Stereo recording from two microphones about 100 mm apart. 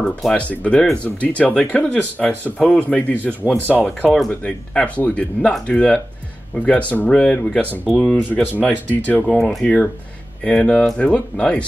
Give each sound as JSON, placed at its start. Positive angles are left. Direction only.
{"t": 0.2, "sound": "speech", "side_deg": 10}
{"t": 9.2, "sound": "speech", "side_deg": 5}